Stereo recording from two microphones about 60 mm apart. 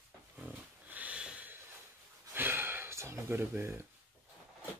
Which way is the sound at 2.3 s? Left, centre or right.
Right.